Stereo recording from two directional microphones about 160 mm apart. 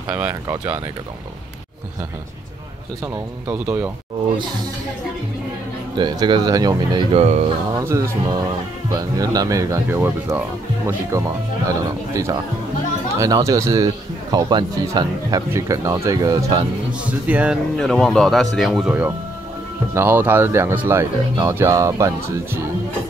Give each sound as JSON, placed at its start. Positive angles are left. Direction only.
{"t": 0.1, "sound": "speech", "side_deg": -15}
{"t": 3.4, "sound": "speech", "side_deg": -10}
{"t": 5.9, "sound": "speech", "side_deg": -25}
{"t": 7.7, "sound": "speech", "side_deg": -20}
{"t": 17.0, "sound": "speech", "side_deg": -10}
{"t": 17.7, "sound": "speech", "side_deg": 0}